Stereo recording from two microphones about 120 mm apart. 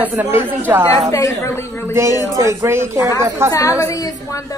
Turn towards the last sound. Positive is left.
turn(degrees=30)  # may be behind; listen again after turning